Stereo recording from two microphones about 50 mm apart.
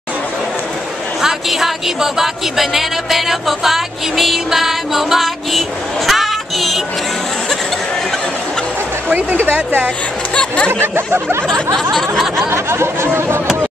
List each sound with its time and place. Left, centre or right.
1.2 s speech: centre
9.1 s speech: right
10.3 s a sound: left
10.7 s speech: right
11.1 s speech: right
11.4 s a sound: centre
12.4 s speech: right